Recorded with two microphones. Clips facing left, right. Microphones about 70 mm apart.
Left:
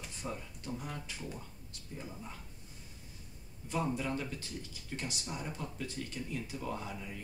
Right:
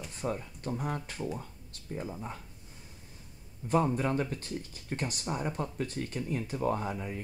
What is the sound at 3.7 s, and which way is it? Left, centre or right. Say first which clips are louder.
Speech: right 7 dB; right.